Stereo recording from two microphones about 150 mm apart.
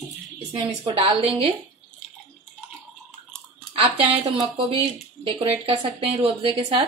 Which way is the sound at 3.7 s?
35° right (ahead or behind).